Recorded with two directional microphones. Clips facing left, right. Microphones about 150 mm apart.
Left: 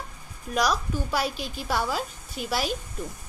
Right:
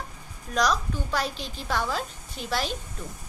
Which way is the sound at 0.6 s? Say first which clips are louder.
Even; 10° left (ahead or behind).